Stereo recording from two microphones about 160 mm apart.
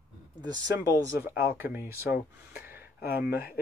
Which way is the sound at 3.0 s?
75° left (ahead or behind).